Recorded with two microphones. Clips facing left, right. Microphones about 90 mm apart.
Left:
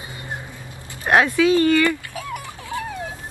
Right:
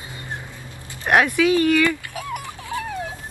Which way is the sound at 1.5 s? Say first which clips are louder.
Left 1 dB; 10° right (ahead or behind).